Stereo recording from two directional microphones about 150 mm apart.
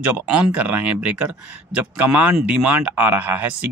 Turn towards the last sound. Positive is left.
turn(degrees=-10)  # may be behind; listen again after turning